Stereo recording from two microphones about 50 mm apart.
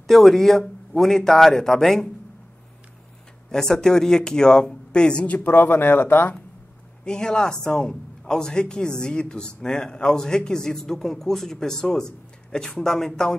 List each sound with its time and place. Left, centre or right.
0.0 s a man's voice: centre
3.4 s a man's voice: centre
5.2 s speech: left
7.1 s a man's voice: centre